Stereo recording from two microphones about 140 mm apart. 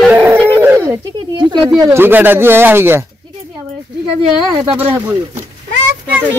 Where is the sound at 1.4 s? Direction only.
30° right (ahead or behind); by 3.0 s 15° right (ahead or behind).